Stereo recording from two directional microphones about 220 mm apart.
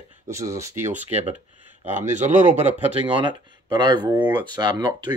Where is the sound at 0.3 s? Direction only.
15° right (ahead or behind).